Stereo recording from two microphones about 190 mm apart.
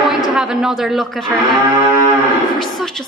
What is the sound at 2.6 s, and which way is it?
Speech, centre (ahead or behind).